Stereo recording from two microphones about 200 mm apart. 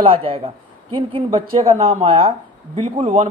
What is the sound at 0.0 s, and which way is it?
Speech, 25° right (ahead or behind).